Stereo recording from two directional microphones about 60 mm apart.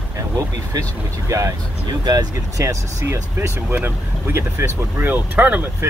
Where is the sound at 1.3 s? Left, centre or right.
Right.